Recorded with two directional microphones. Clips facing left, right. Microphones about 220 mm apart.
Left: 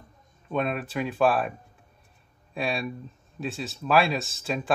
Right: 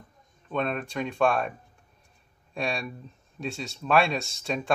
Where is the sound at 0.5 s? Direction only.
5° left (ahead or behind).